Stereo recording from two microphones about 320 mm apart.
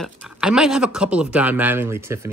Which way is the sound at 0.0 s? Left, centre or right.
Centre.